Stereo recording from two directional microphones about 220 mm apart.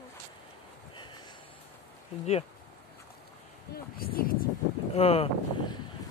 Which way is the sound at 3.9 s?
40° left (ahead or behind).